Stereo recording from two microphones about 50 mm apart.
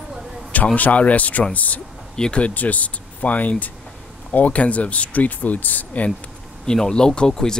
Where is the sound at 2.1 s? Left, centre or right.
Centre.